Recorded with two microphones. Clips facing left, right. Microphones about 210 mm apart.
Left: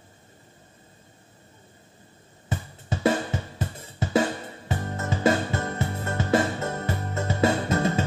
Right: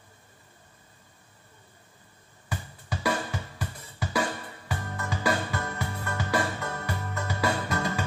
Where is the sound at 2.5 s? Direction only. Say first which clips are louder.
Left 4 dB; 25° left (ahead or behind).